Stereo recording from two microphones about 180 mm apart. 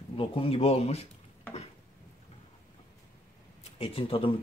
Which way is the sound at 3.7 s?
30° left (ahead or behind).